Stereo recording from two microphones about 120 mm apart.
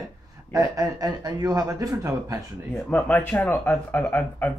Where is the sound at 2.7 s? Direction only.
15° left (ahead or behind).